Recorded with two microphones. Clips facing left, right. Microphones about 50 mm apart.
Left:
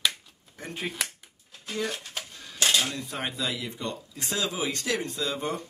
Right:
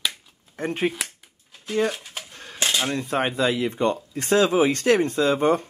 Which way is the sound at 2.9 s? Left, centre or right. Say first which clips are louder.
Right 9 dB; right.